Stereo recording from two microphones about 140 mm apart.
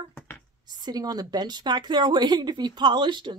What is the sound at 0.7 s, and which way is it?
A woman's voice, 30° right (ahead or behind).